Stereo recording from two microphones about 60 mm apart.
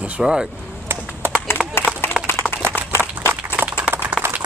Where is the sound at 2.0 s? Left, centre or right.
Left.